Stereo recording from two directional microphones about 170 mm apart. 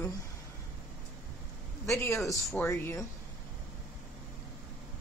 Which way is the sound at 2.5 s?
10° left (ahead or behind).